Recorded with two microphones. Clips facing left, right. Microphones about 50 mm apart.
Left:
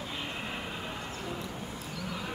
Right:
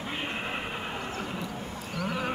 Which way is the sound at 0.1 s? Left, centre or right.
Right.